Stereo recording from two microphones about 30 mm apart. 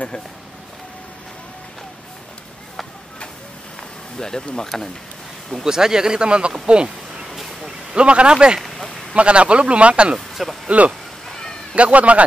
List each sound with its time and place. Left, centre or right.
4.2 s speech: left
5.6 s speech: centre
6.7 s insect: right
7.9 s a man's voice: right
8.5 s a sound: centre
9.1 s a man's voice: right
10.1 s speech: centre
11.2 s a sound: centre
11.7 s a man's voice: right